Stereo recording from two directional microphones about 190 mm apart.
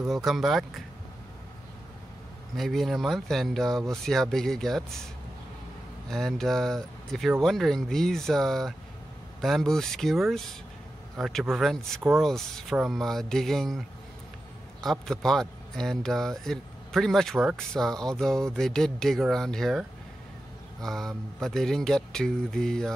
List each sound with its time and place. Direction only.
0.1 s a man's voice: centre (ahead or behind)
2.5 s a man's voice: centre (ahead or behind)
6.0 s a man's voice: centre (ahead or behind)